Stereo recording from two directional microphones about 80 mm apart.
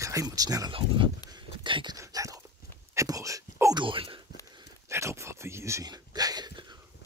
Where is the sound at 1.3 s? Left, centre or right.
Right.